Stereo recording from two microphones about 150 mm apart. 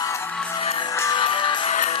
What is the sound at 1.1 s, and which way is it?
Music, 35° left (ahead or behind).